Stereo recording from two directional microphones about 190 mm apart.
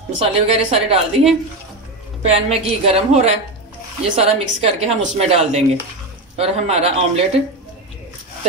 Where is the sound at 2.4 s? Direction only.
30° right (ahead or behind).